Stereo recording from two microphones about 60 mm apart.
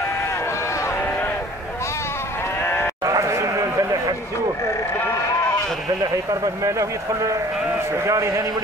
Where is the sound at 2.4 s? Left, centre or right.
Left.